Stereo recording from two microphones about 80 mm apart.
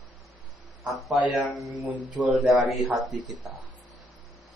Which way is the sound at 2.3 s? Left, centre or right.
Centre.